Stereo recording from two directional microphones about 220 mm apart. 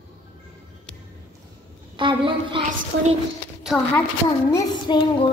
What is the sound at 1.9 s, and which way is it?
Speech, 20° right (ahead or behind).